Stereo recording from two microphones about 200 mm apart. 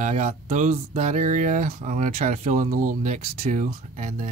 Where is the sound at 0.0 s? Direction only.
35° right (ahead or behind).